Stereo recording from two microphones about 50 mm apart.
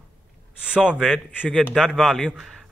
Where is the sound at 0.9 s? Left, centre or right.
Centre.